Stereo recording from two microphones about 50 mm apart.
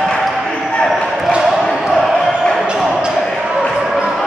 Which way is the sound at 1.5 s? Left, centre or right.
Centre.